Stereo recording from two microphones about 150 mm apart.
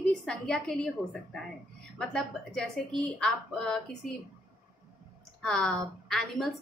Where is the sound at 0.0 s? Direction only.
5° left (ahead or behind).